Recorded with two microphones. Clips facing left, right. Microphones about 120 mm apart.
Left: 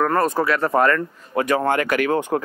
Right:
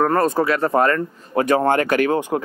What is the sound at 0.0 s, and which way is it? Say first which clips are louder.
Speech: right 2 dB; 30° right (ahead or behind).